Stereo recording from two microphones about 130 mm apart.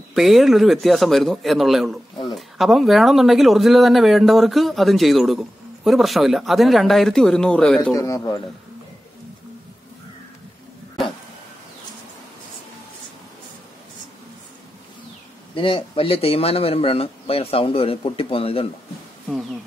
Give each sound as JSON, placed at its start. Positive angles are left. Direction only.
{"t": 0.1, "sound": "speech", "side_deg": 0}
{"t": 7.9, "sound": "speech", "side_deg": 25}
{"t": 15.5, "sound": "speech", "side_deg": 40}